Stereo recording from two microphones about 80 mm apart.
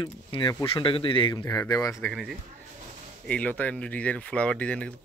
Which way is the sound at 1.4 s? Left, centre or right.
Left.